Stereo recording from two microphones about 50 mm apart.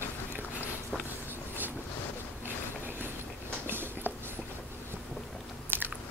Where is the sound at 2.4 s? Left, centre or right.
Right.